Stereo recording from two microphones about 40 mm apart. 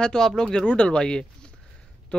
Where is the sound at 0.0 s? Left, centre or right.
Centre.